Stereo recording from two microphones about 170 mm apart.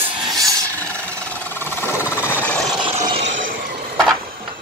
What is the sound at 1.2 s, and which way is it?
Vehicle, 10° left (ahead or behind).